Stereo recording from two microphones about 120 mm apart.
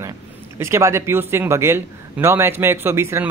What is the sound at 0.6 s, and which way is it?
A man's voice, 25° right (ahead or behind).